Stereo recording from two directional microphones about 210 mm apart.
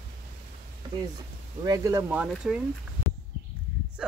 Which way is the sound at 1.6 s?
15° right (ahead or behind).